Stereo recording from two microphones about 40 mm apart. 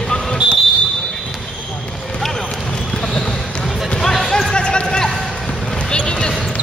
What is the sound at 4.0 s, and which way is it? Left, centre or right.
Basketball bounce, centre.